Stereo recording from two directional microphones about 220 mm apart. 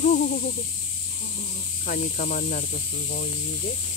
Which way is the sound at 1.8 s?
40° left (ahead or behind).